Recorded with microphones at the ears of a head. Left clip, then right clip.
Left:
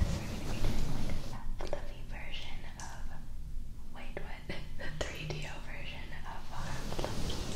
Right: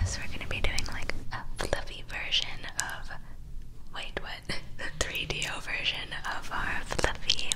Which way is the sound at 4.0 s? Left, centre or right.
Right.